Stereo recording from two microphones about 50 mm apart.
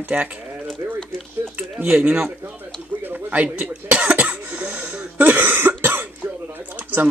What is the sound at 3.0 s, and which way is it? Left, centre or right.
Cough, right.